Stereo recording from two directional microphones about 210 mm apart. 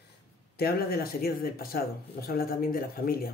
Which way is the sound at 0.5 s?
45° left (ahead or behind).